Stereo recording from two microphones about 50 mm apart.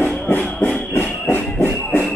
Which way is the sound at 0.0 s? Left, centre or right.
Left.